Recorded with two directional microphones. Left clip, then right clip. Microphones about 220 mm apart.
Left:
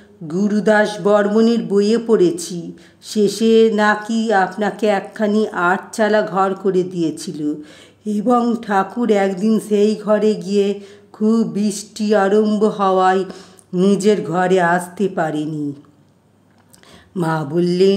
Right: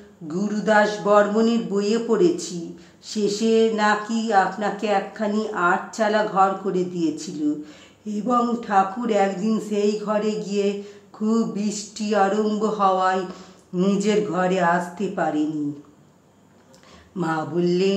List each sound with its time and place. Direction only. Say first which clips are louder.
0.3 s speech: left 5 dB; 45° left (ahead or behind)
17.1 s speech: left 5 dB; 45° left (ahead or behind)